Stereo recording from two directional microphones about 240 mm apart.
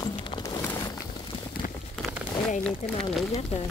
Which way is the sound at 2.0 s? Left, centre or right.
Centre.